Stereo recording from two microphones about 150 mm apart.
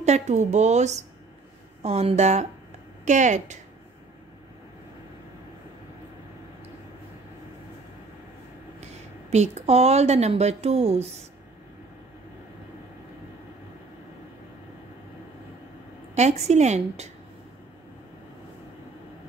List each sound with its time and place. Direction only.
0.0 s speech: 50° right (ahead or behind)
9.3 s speech: 45° right (ahead or behind)
16.2 s speech: 45° right (ahead or behind)